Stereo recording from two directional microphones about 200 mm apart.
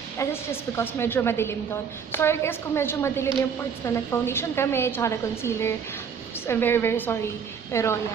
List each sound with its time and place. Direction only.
0.2 s a woman's voice: 15° left (ahead or behind)